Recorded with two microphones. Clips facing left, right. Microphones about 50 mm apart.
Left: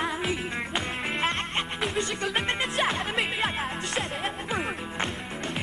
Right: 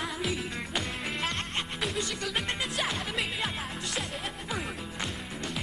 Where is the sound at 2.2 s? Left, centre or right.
Left.